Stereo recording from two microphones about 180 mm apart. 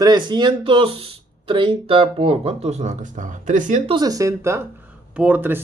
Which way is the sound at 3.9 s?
20° right (ahead or behind).